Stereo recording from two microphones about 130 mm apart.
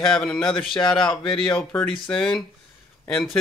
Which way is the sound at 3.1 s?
5° left (ahead or behind).